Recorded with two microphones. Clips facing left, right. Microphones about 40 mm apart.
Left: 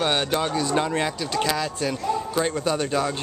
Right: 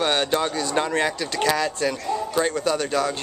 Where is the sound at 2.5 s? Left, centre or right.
Centre.